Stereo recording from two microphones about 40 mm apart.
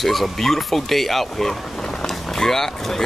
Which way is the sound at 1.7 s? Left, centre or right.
Centre.